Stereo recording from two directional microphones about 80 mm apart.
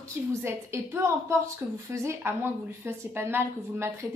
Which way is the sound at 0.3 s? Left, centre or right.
Right.